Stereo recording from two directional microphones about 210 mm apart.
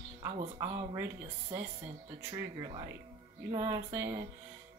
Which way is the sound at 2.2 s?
10° right (ahead or behind).